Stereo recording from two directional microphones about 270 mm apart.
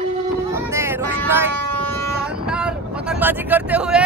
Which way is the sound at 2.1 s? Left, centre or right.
Centre.